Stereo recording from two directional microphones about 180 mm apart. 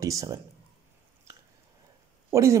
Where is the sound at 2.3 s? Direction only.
15° right (ahead or behind).